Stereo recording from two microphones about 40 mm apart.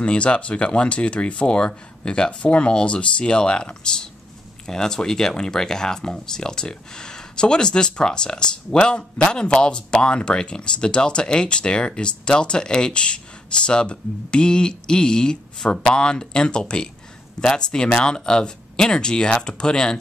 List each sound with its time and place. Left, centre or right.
0.0 s speech: left